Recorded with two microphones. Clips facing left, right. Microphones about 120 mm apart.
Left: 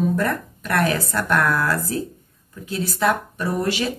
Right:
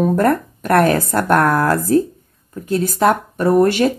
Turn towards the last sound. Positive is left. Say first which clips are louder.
# right 10 dB
turn(degrees=-50)  # may be behind; listen again after turning